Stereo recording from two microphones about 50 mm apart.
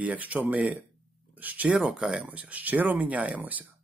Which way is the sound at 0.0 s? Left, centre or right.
Right.